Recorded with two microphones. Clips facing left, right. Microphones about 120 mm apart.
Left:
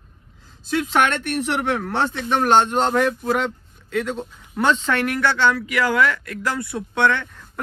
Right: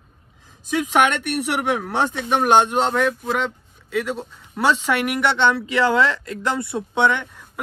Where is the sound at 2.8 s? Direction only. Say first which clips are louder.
Left 1 dB; centre (ahead or behind).